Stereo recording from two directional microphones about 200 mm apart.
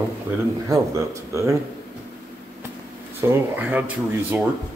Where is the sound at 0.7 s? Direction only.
15° right (ahead or behind).